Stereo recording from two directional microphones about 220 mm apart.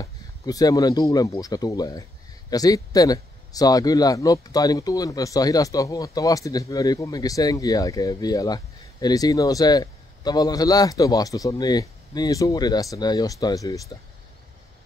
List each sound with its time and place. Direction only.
0.0 s speech: 15° left (ahead or behind)